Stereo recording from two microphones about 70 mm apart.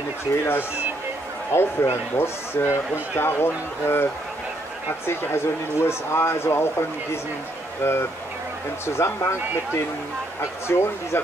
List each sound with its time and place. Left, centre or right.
1.5 s speech: left
7.8 s speech: left
10.7 s speech: left